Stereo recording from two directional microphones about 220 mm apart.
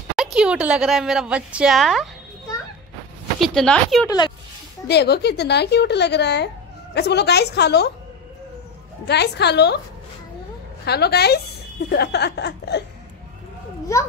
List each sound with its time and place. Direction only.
0.1 s speech: 5° right (ahead or behind)
3.3 s speech: centre (ahead or behind)
4.8 s speech: 50° left (ahead or behind)
9.0 s speech: 50° left (ahead or behind)
10.9 s speech: 45° left (ahead or behind)